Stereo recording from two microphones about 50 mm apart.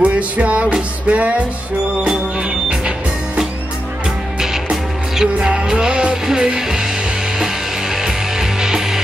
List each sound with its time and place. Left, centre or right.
0.0 s music: right
4.4 s music: centre